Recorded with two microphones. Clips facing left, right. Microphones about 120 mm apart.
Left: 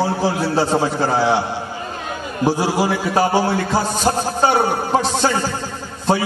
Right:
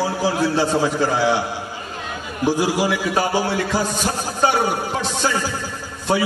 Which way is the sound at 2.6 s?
40° left (ahead or behind).